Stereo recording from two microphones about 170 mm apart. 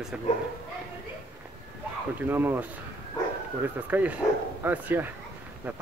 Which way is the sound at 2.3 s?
10° right (ahead or behind).